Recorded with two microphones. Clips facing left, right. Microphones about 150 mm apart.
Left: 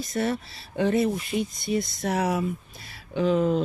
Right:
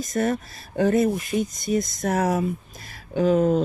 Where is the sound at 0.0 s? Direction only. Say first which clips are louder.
Right 3 dB; 45° right (ahead or behind).